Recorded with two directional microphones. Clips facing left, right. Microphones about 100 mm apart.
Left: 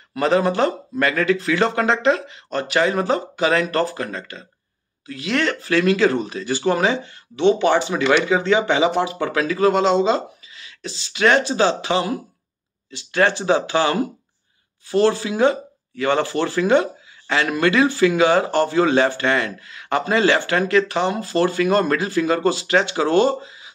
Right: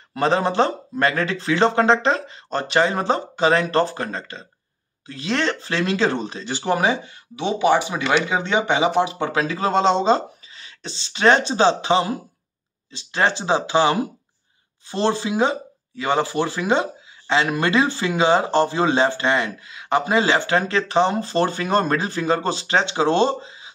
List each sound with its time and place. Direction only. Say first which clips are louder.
0.1 s speech: left 2 dB; 30° right (ahead or behind)